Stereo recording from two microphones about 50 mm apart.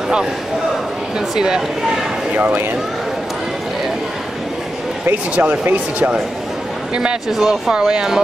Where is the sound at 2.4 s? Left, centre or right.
Right.